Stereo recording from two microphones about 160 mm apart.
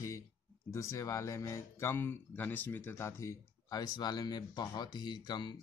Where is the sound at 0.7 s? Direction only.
20° left (ahead or behind).